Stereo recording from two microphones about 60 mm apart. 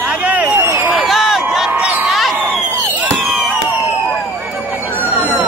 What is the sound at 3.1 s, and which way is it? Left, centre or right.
Fireworks, centre.